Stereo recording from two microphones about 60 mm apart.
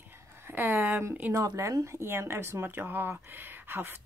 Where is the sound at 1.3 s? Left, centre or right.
Right.